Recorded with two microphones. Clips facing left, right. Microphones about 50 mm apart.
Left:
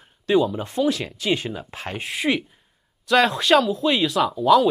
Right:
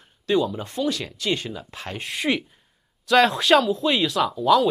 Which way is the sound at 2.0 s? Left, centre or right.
Centre.